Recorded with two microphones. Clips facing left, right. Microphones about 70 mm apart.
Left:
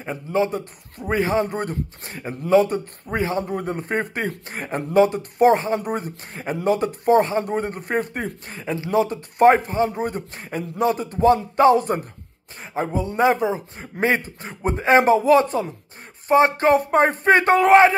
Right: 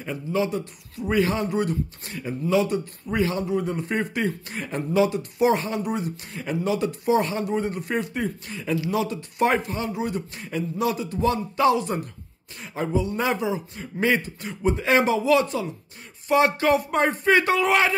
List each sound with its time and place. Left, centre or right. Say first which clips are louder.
0.0 s speech: left 3 dB; left
1.5 s speech: right 2 dB; left
3.4 s speech: even; left
9.8 s speech: left 2 dB; left
12.5 s speech: left 1 dB; left